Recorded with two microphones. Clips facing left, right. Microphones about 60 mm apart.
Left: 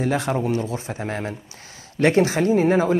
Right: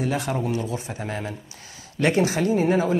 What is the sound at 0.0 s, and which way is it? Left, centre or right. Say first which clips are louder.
Speech: left 3 dB; left.